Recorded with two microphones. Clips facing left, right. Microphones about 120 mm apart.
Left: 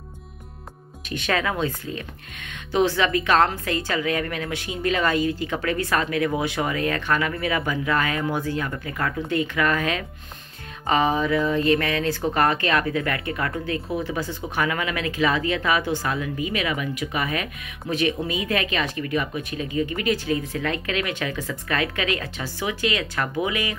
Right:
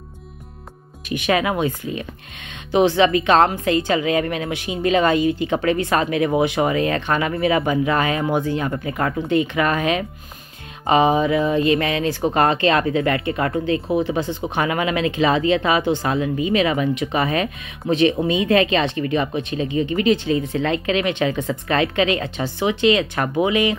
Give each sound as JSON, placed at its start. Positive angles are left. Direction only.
{"t": 1.0, "sound": "speech", "side_deg": -15}